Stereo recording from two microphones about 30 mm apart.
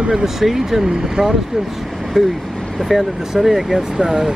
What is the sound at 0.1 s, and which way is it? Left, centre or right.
Speech, centre.